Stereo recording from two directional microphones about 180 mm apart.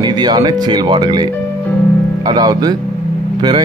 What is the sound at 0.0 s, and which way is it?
Speech, 25° right (ahead or behind).